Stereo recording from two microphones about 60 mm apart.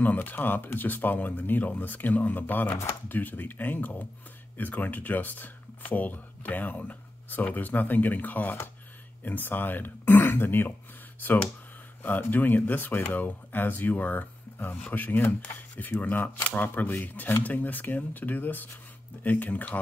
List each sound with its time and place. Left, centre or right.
0.0 s speech: left
12.0 s speech: left